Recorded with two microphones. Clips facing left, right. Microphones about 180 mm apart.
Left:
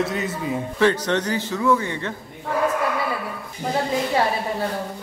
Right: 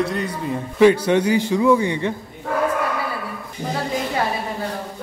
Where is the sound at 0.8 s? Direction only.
10° right (ahead or behind).